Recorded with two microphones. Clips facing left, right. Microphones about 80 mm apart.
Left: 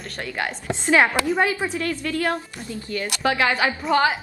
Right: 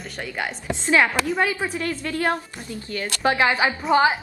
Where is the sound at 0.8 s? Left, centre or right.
Left.